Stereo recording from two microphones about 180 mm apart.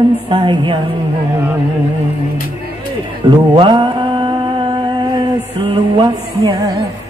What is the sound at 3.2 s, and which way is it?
Speech, 25° right (ahead or behind).